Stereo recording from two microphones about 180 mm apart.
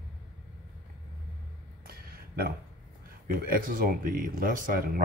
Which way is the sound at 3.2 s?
50° right (ahead or behind).